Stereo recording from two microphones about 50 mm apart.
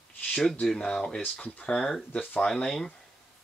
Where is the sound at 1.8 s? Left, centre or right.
Centre.